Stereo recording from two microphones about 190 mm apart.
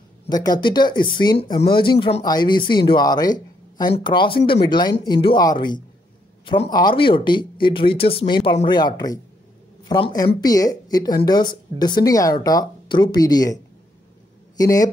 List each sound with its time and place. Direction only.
0.3 s speech: 20° left (ahead or behind)
14.6 s a man's voice: 20° left (ahead or behind)